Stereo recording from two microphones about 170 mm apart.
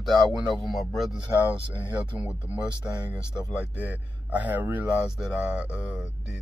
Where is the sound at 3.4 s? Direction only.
15° left (ahead or behind).